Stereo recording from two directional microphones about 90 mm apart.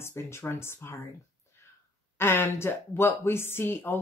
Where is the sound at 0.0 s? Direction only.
30° left (ahead or behind).